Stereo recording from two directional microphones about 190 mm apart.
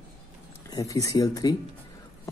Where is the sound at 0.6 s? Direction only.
20° left (ahead or behind).